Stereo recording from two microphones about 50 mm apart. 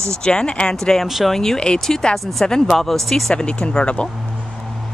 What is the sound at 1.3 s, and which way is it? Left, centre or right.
Speech, centre.